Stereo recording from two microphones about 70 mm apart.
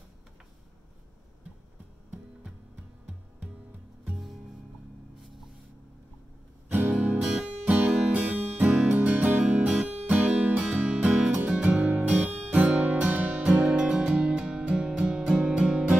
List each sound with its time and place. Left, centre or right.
4.0 s music: centre
6.7 s music: right
7.2 s music: centre
7.6 s music: right